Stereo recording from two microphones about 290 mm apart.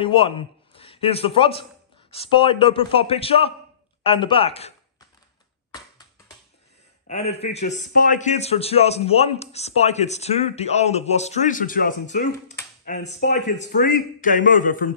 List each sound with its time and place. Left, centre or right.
0.0 s a man's voice: centre
7.1 s a man's voice: left